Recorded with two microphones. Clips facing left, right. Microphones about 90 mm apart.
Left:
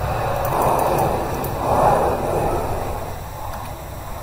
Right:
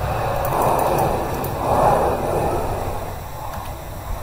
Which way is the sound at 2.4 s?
65° left (ahead or behind).